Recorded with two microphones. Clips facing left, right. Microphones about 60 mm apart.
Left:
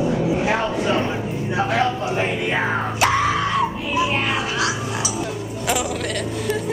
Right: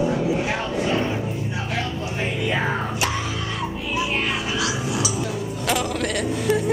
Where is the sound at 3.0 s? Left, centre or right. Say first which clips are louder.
Left 12 dB; left.